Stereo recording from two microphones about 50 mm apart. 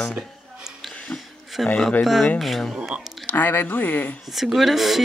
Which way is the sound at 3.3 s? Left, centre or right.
Left.